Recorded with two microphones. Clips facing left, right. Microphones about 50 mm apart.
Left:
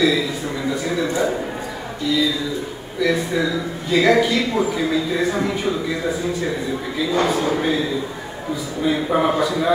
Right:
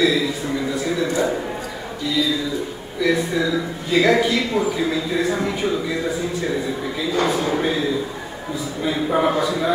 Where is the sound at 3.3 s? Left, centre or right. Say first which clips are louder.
Even; centre.